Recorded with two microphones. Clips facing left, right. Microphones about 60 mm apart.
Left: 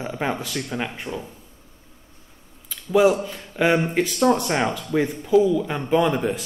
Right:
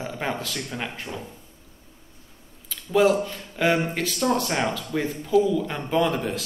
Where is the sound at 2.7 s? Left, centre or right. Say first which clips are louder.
Left 2 dB; centre.